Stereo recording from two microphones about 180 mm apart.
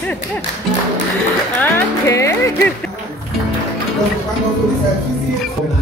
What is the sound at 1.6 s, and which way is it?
Speech, 15° left (ahead or behind).